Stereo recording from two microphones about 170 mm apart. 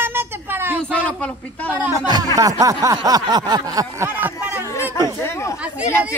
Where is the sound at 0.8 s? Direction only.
5° left (ahead or behind).